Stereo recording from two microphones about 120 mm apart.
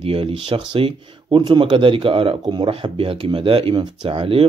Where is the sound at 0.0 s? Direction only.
50° right (ahead or behind).